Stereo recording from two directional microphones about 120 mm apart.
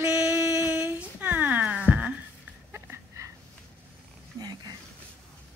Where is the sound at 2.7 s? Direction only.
20° right (ahead or behind).